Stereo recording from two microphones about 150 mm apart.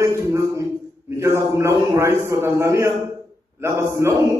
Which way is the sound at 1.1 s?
20° right (ahead or behind).